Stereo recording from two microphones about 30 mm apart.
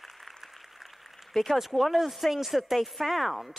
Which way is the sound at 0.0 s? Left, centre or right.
Centre.